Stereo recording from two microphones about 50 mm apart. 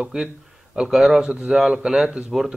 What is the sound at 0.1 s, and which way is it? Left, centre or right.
Speech, centre.